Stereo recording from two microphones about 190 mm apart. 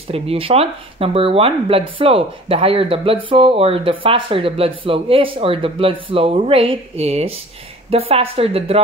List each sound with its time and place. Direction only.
0.1 s a woman's voice: 30° right (ahead or behind)